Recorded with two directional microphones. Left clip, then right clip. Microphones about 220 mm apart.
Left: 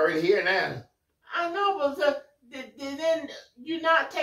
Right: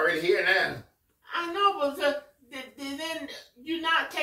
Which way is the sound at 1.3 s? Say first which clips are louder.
Even; 20° left (ahead or behind).